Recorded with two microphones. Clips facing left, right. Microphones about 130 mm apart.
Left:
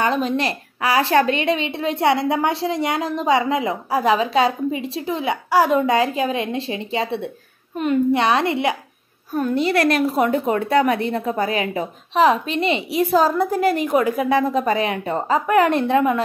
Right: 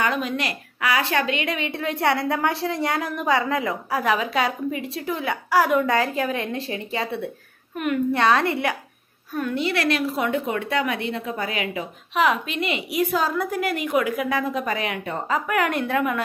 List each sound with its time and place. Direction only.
0.0 s a woman's voice: 30° left (ahead or behind)
9.3 s a woman's voice: 35° left (ahead or behind)